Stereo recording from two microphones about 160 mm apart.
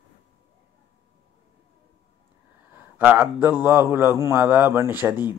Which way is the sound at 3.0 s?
10° right (ahead or behind).